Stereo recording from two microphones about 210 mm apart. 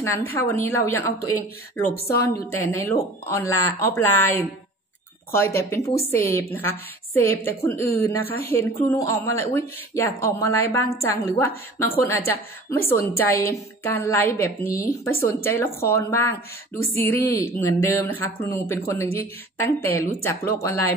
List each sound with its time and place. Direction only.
0.0 s speech: 10° left (ahead or behind)
1.9 s a woman's voice: 50° left (ahead or behind)
2.2 s speech: 15° left (ahead or behind)
5.6 s speech: 10° left (ahead or behind)